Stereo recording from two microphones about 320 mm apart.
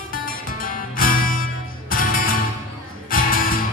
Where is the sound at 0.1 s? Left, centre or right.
Left.